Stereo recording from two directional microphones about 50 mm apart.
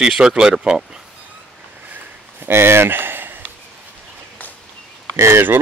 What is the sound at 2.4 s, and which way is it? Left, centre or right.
Speech, right.